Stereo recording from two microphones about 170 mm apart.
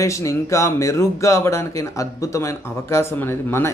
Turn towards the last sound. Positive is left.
turn(degrees=15)  # may be behind; listen again after turning